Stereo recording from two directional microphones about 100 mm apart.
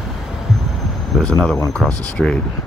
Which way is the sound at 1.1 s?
5° left (ahead or behind).